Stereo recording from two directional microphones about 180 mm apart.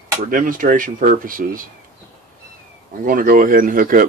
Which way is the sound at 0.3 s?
50° right (ahead or behind).